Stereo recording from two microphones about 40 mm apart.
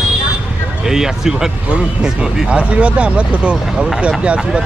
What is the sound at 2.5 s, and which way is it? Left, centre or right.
Speech, right.